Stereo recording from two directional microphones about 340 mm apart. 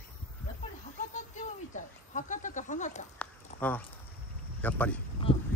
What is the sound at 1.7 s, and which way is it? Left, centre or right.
Sheep, left.